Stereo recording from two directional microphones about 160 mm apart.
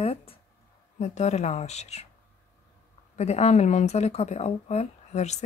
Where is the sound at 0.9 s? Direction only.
45° left (ahead or behind).